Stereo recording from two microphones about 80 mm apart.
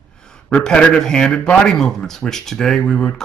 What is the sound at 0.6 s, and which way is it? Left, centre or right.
Speech, centre.